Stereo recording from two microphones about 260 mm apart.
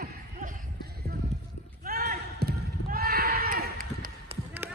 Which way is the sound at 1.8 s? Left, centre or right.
Right.